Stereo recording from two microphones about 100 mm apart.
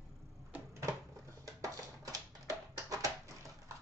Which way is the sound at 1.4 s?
35° right (ahead or behind).